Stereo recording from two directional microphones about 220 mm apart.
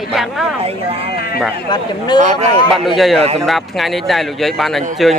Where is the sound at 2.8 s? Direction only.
Centre (ahead or behind).